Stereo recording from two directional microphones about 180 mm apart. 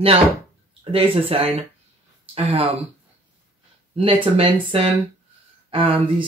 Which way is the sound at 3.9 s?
30° right (ahead or behind).